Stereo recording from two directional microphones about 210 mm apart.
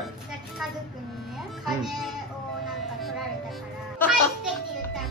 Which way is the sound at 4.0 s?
10° left (ahead or behind).